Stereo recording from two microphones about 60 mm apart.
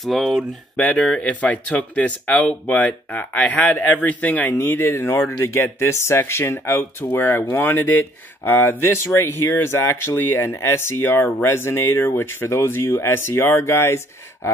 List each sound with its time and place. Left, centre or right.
0.0 s speech: centre
0.9 s speech: centre
4.6 s speech: left